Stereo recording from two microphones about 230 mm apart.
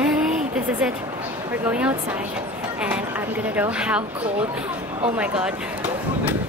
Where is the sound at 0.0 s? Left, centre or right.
Centre.